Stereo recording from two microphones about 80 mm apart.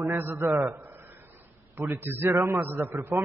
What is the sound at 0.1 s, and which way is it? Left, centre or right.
Speech, right.